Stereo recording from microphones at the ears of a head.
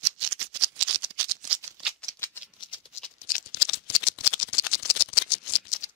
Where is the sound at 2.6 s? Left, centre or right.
Left.